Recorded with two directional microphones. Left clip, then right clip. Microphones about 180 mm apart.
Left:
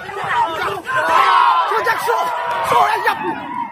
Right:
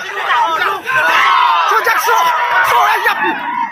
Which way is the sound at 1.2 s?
80° left.